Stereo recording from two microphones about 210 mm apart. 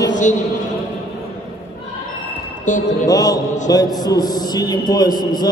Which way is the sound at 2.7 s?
35° left (ahead or behind).